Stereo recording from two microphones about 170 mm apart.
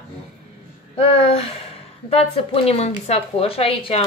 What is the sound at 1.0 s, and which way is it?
A woman's voice, 35° left (ahead or behind).